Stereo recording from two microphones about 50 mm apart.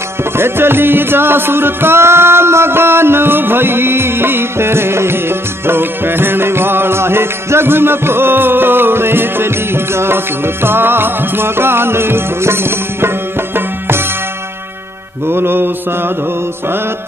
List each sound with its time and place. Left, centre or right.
0.4 s music: right
15.2 s music: right